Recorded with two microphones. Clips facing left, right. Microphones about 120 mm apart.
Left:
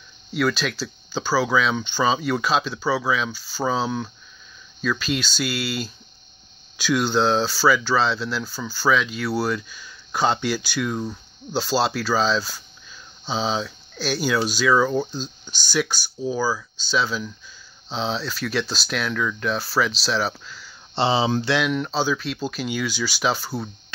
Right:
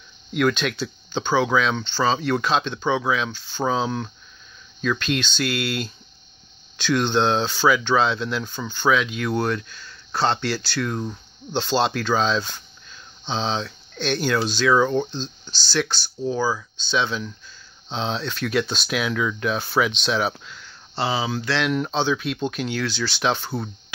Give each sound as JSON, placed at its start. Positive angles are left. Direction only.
{"t": 0.3, "sound": "speech", "side_deg": 5}
{"t": 20.9, "sound": "speech", "side_deg": 25}
{"t": 21.6, "sound": "speech", "side_deg": 0}